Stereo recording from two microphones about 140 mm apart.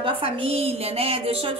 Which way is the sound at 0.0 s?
40° right (ahead or behind).